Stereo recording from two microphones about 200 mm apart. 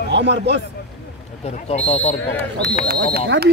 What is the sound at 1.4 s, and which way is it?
Speech, 30° left (ahead or behind).